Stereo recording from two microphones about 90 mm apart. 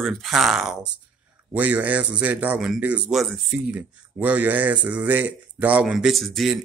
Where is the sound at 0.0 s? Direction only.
Centre (ahead or behind).